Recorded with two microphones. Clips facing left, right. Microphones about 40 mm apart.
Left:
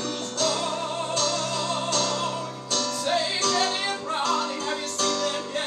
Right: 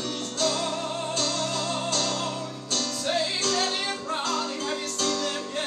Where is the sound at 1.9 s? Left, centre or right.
Left.